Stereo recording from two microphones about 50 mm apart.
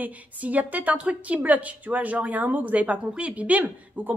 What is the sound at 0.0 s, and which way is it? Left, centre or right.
A woman's voice, right.